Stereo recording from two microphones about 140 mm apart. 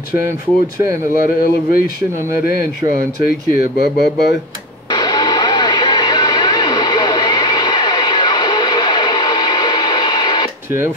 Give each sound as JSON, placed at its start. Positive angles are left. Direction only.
{"t": 1.1, "sound": "speech", "side_deg": 80}
{"t": 2.9, "sound": "speech", "side_deg": 90}
{"t": 4.8, "sound": "radio", "side_deg": 30}